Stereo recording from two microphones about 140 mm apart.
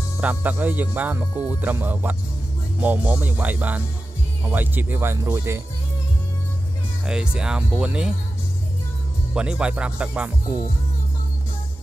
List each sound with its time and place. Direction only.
0.2 s speech: 10° right (ahead or behind)
7.1 s speech: 5° right (ahead or behind)
9.3 s speech: 5° right (ahead or behind)